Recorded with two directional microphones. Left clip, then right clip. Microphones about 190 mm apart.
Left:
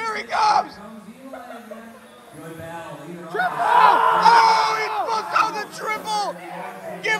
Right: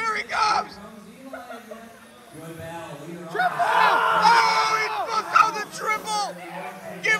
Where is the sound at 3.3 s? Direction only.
55° left (ahead or behind).